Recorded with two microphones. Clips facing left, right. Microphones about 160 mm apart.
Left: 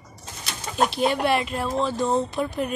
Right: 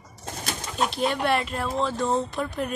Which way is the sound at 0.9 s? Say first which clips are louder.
Even; 5° left (ahead or behind).